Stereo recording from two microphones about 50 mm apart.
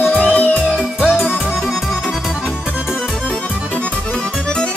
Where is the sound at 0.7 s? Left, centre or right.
Centre.